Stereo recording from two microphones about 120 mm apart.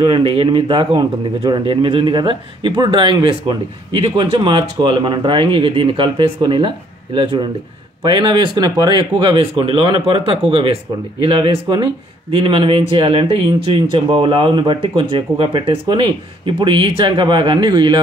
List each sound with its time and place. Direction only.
0.0 s speech: 45° right (ahead or behind)
8.0 s speech: 40° right (ahead or behind)
11.6 s speech: 35° right (ahead or behind)
12.4 s speech: 45° right (ahead or behind)